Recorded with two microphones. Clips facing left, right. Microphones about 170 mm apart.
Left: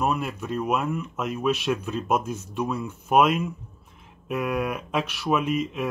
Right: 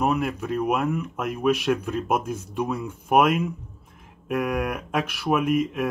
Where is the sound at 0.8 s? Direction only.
65° right (ahead or behind).